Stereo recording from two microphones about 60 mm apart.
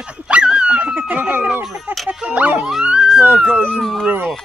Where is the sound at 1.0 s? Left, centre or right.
Right.